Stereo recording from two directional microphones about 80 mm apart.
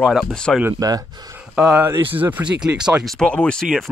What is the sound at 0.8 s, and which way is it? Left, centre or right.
Speech, right.